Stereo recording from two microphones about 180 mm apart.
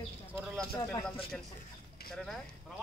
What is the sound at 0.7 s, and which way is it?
Speech, 10° left (ahead or behind).